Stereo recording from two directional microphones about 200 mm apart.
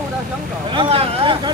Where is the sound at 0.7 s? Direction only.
25° right (ahead or behind).